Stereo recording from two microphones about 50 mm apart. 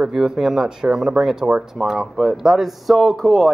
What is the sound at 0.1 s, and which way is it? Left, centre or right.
Speech, centre.